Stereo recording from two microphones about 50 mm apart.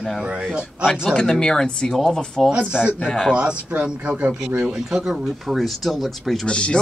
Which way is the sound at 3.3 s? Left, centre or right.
Right.